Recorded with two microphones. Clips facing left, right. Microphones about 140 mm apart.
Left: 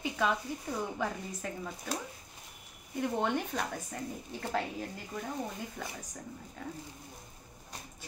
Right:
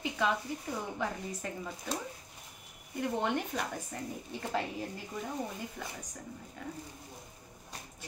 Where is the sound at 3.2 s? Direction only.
5° right (ahead or behind).